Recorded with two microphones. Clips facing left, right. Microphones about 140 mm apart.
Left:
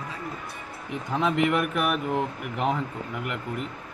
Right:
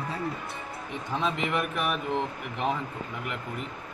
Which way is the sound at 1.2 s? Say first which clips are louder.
Left 6 dB; 65° left (ahead or behind).